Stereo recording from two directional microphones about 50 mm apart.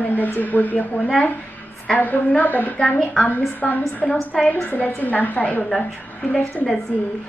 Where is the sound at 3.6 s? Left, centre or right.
Left.